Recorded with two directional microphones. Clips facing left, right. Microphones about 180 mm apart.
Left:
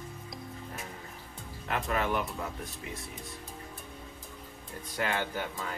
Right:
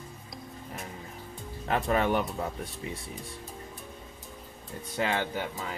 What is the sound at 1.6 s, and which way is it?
Speech, 35° right (ahead or behind).